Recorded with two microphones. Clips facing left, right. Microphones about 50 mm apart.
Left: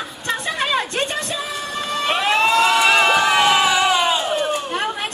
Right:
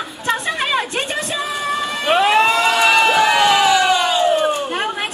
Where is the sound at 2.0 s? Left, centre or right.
Centre.